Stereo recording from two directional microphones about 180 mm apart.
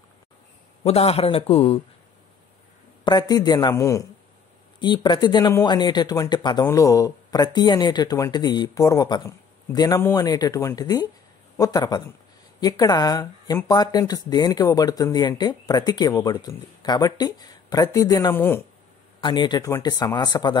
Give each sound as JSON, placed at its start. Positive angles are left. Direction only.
{"t": 0.8, "sound": "a man's voice", "side_deg": 35}
{"t": 3.1, "sound": "speech", "side_deg": 25}
{"t": 19.2, "sound": "speech", "side_deg": 25}